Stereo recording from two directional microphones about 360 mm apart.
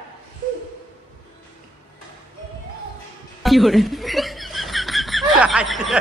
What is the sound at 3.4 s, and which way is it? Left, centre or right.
Chuckle, centre.